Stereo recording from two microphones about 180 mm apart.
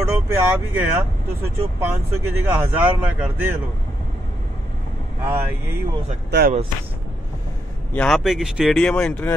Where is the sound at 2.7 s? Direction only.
10° right (ahead or behind).